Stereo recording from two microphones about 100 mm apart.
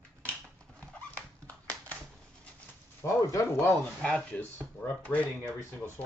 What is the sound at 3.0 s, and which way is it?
Speech, 25° left (ahead or behind).